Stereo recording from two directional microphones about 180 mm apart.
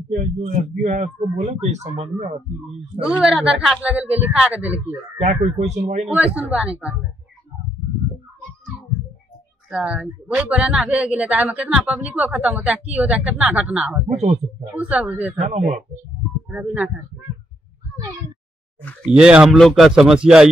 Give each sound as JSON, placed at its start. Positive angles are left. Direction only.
{"t": 0.4, "sound": "a man's voice", "side_deg": -40}
{"t": 3.2, "sound": "speech", "side_deg": 0}
{"t": 5.2, "sound": "a man's voice", "side_deg": -40}
{"t": 6.0, "sound": "speech", "side_deg": -5}
{"t": 9.7, "sound": "speech", "side_deg": -5}
{"t": 14.0, "sound": "speech", "side_deg": -40}
{"t": 14.7, "sound": "speech", "side_deg": -5}
{"t": 15.3, "sound": "a man's voice", "side_deg": -40}
{"t": 16.4, "sound": "speech", "side_deg": -10}
{"t": 19.1, "sound": "speech", "side_deg": -5}